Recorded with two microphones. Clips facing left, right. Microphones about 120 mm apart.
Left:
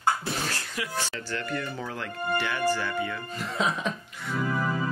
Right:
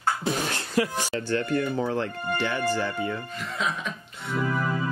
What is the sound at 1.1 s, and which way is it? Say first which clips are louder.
Speech: right 7 dB; 25° right (ahead or behind).